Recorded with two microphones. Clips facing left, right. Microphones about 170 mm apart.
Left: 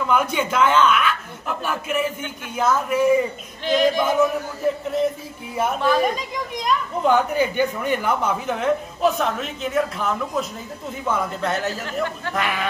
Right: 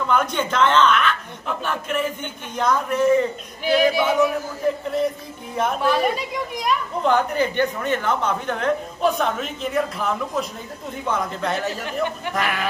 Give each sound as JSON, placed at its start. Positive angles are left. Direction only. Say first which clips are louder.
{"t": 0.0, "sound": "speech", "louder": "left 1 dB", "side_deg": 5}
{"t": 3.6, "sound": "yodeling", "louder": "even", "side_deg": -10}
{"t": 4.8, "sound": "speech", "louder": "left 1 dB", "side_deg": 0}
{"t": 5.8, "sound": "speech", "louder": "left 1 dB", "side_deg": -5}
{"t": 7.0, "sound": "speech", "louder": "left 1 dB", "side_deg": 5}
{"t": 11.8, "sound": "yodeling", "louder": "right 1 dB", "side_deg": -15}
{"t": 12.4, "sound": "speech", "louder": "even", "side_deg": 0}